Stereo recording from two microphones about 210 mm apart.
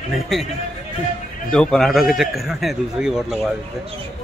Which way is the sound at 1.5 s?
5° left (ahead or behind).